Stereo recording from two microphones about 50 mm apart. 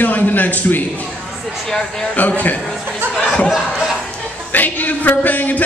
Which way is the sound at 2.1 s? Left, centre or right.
Left.